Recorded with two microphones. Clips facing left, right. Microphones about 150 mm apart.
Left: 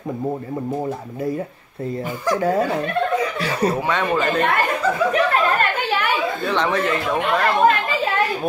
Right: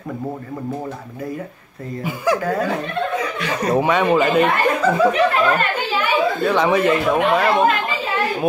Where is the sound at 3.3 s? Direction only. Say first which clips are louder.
Left 2 dB; 35° left (ahead or behind).